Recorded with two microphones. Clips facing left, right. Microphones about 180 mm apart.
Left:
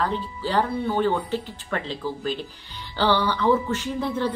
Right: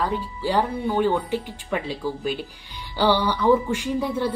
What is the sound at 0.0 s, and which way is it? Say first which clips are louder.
A woman's voice: right 1 dB; 10° right (ahead or behind).